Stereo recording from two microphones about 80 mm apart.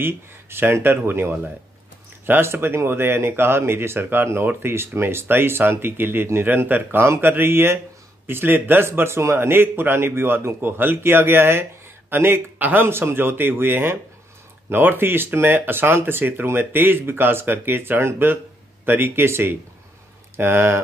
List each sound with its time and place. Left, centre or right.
0.0 s speech: right
12.5 s speech: centre